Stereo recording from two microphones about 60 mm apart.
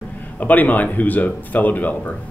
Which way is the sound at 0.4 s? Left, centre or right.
Left.